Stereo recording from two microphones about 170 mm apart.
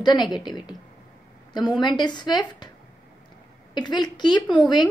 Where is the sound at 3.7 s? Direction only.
25° left (ahead or behind).